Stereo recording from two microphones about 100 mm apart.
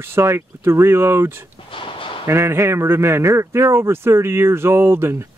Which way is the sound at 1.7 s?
60° left (ahead or behind).